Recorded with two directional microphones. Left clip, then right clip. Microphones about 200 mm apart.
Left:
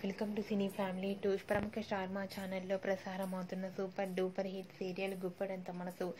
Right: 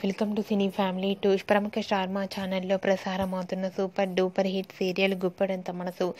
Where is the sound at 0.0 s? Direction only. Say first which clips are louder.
Right 11 dB; 40° right (ahead or behind).